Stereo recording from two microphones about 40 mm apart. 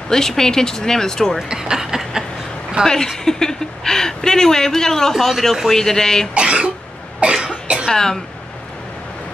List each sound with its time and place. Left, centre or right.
0.1 s speech: centre
1.5 s speech: centre
2.8 s speech: centre
6.3 s speech: right
7.2 s cough: right
7.9 s speech: centre